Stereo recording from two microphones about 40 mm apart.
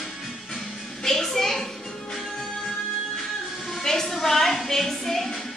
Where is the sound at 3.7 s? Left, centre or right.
Centre.